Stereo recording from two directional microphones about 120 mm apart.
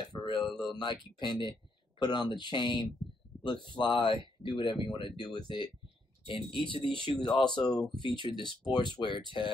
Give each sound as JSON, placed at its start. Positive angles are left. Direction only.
{"t": 0.0, "sound": "a sound", "side_deg": 40}
{"t": 0.5, "sound": "speech", "side_deg": 0}
{"t": 0.7, "sound": "speech", "side_deg": 40}
{"t": 6.9, "sound": "speech", "side_deg": -45}
{"t": 7.2, "sound": "speech", "side_deg": 40}